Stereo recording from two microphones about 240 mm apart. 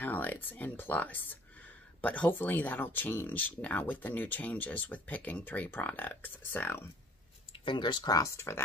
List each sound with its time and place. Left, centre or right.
0.0 s speech: centre
7.6 s speech: centre